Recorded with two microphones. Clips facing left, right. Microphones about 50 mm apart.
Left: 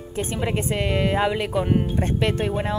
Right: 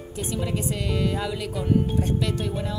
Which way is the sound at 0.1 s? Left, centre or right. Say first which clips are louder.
Left 4 dB; left.